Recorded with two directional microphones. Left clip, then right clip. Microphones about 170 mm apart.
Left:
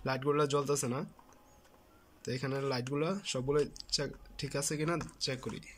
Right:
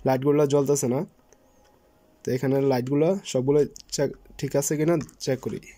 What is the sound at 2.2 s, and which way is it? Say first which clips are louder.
Speech: right 13 dB; 45° right (ahead or behind).